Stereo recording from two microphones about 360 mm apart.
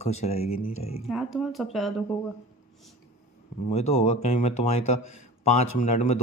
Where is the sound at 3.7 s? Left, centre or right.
Centre.